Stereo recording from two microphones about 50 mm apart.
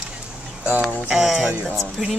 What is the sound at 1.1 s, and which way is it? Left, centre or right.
Speech, centre.